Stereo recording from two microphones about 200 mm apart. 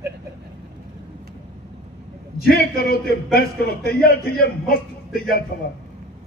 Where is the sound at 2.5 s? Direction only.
50° left (ahead or behind).